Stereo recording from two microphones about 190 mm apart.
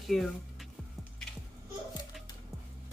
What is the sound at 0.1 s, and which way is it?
Speech, centre (ahead or behind).